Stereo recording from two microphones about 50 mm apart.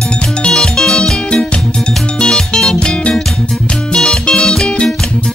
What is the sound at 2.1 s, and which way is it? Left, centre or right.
Music, centre.